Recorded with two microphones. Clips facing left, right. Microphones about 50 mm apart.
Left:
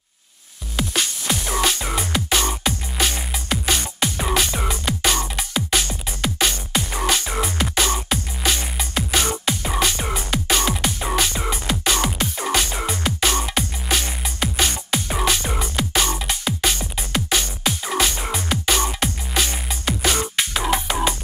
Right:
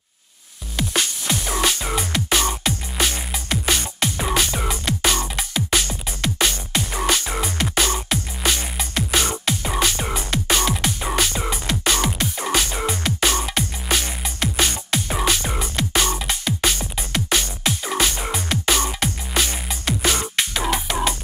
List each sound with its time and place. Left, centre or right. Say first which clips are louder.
0.7 s music: even; centre
13.3 s music: even; centre
13.8 s music: even; centre